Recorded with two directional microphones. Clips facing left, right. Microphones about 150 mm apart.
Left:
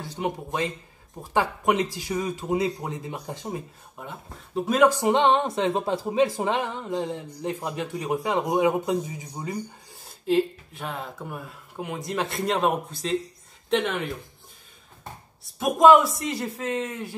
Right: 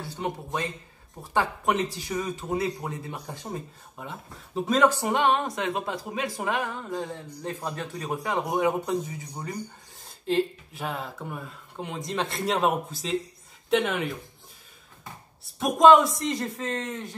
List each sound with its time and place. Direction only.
0.0 s speech: 15° left (ahead or behind)
4.6 s speech: 10° left (ahead or behind)
15.6 s speech: centre (ahead or behind)